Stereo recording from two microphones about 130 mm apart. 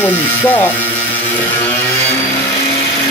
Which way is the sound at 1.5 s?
15° left (ahead or behind).